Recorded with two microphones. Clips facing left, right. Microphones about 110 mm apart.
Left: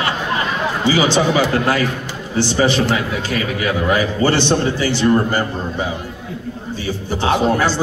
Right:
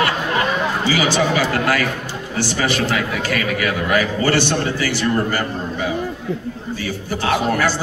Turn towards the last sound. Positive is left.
turn(degrees=25)  # may be behind; listen again after turning